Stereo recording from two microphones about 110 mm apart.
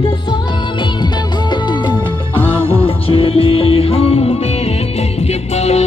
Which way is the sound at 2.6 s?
55° left (ahead or behind).